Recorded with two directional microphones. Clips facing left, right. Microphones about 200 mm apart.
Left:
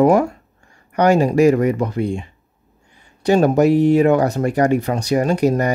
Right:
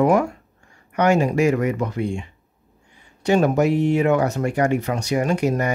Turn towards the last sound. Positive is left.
turn(degrees=35)  # may be behind; listen again after turning